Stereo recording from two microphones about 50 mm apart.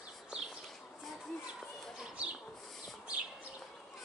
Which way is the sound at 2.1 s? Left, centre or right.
Right.